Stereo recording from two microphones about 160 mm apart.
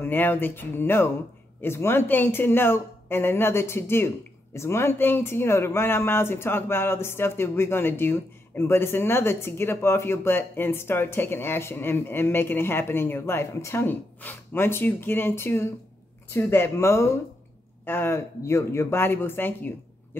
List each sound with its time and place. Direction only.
0.0 s speech: 10° left (ahead or behind)